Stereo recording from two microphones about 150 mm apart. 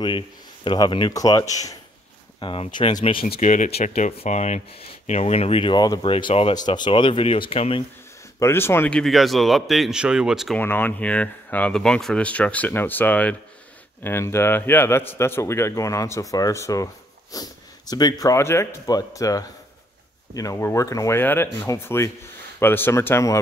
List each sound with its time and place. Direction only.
0.7 s a man's voice: 30° left (ahead or behind)
2.4 s speech: 35° left (ahead or behind)
3.3 s speech: 55° left (ahead or behind); by 6.5 s 40° left (ahead or behind)
6.5 s speech: 30° left (ahead or behind)
8.4 s speech: 15° left (ahead or behind); by 10.6 s centre (ahead or behind)
10.6 s a man's voice: 15° left (ahead or behind)